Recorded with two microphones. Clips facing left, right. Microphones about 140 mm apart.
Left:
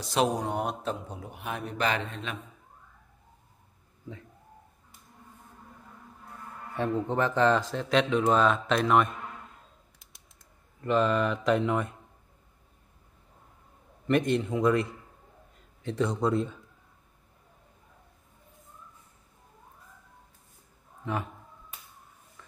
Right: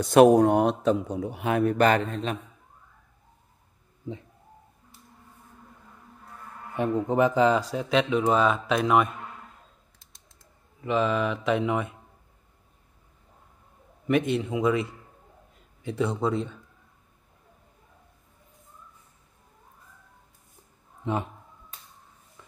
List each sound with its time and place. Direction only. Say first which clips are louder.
0.0 s a man's voice: right 11 dB; 55° right (ahead or behind); by 2.3 s 40° right (ahead or behind)
4.1 s speech: right 7 dB; 25° right (ahead or behind)
6.7 s speech: right 3 dB; 15° right (ahead or behind)
10.8 s mantra: even; centre (ahead or behind)
14.0 s mantra: right 1 dB; 5° right (ahead or behind)
15.5 s a man's voice: right 1 dB; 5° right (ahead or behind)
21.0 s speech: right 4 dB; 25° right (ahead or behind)
22.4 s a sound: right 1 dB; 15° right (ahead or behind)